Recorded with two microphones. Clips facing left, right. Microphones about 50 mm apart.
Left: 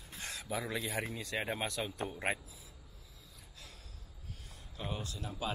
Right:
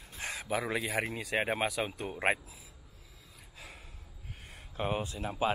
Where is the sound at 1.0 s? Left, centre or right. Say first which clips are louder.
Right 5 dB; right.